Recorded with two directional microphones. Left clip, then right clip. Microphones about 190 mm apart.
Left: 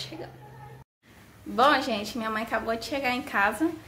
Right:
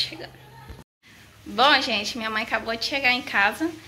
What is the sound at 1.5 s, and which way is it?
A woman's voice, 10° left (ahead or behind).